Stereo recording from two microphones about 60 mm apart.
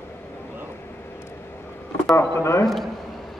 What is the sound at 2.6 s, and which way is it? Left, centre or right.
Speech, centre.